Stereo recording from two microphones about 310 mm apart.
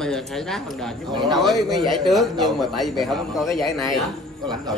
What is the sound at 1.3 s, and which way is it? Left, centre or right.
Speech, centre.